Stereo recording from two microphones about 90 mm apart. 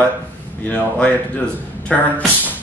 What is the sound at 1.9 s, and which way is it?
Speech, 15° left (ahead or behind).